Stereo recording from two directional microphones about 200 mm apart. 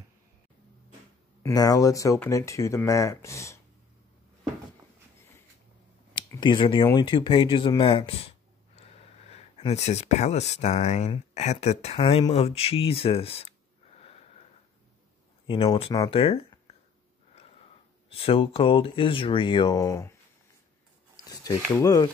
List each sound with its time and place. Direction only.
1.4 s speech: 20° left (ahead or behind)
6.1 s speech: 25° left (ahead or behind)
15.4 s speech: 25° left (ahead or behind)
18.1 s speech: 25° left (ahead or behind)
21.2 s speech: 15° left (ahead or behind)